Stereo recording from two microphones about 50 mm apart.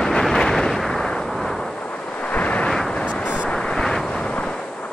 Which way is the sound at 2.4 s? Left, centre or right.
Left.